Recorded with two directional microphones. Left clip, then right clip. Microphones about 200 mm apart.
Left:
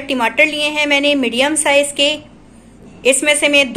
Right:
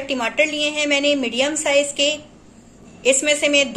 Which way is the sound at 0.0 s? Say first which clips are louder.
Left 6 dB; 5° left (ahead or behind).